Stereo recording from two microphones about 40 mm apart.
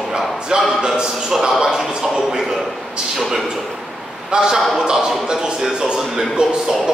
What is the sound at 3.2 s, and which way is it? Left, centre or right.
Speech, centre.